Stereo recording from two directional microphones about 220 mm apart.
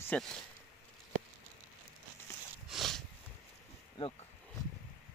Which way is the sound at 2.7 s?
Centre (ahead or behind).